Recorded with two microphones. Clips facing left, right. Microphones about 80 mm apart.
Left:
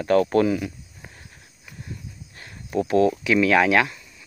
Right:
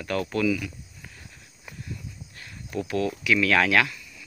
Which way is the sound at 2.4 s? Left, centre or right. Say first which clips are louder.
Left 7 dB; left.